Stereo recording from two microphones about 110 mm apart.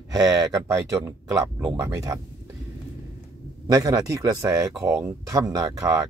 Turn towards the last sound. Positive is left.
turn(degrees=-30)  # may be behind; listen again after turning